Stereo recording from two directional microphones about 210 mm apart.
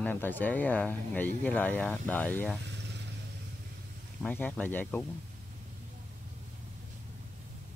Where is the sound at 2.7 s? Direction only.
55° right (ahead or behind).